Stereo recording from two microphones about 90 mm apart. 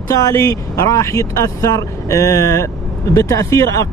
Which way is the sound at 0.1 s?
35° left (ahead or behind).